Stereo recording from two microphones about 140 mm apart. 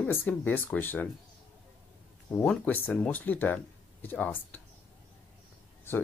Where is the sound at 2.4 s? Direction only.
10° left (ahead or behind).